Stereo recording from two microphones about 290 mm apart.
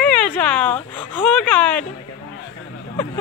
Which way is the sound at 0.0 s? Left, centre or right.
Centre.